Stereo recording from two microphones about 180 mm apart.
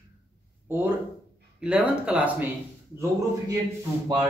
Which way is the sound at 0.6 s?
10° right (ahead or behind).